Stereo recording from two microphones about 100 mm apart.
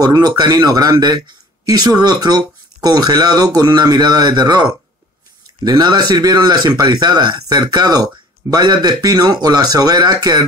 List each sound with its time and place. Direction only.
0.0 s speech: 40° right (ahead or behind)